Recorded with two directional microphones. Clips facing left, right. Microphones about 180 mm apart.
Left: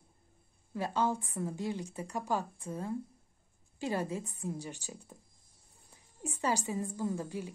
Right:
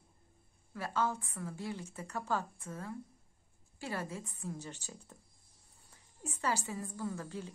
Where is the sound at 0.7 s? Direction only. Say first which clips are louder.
Left 3 dB; 20° left (ahead or behind).